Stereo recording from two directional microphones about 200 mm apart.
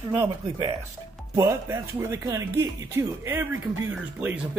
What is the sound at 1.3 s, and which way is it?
Speech, 15° right (ahead or behind).